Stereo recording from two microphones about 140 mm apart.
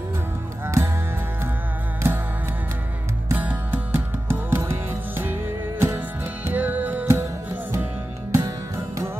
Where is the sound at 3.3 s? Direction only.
10° right (ahead or behind).